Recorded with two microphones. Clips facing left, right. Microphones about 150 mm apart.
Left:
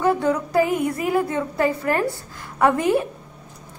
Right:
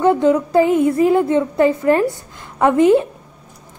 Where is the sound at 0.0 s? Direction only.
20° right (ahead or behind).